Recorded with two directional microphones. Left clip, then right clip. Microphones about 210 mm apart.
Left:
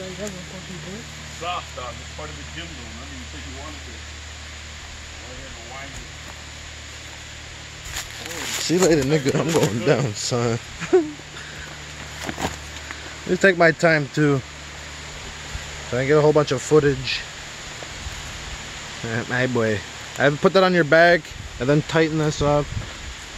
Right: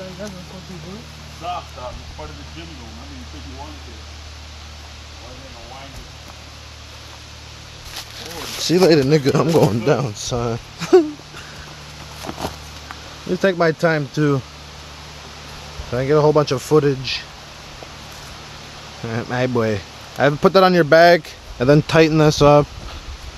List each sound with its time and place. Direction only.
8.6 s speech: 35° right (ahead or behind)
9.9 s speech: centre (ahead or behind)
10.8 s speech: 50° right (ahead or behind)
12.3 s a sound: 15° left (ahead or behind)
13.4 s speech: 5° right (ahead or behind)
15.9 s speech: 15° right (ahead or behind)
19.0 s speech: 10° right (ahead or behind); by 22.7 s 35° right (ahead or behind)